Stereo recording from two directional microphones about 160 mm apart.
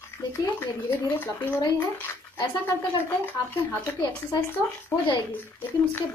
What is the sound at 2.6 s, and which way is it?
Speech, 15° left (ahead or behind).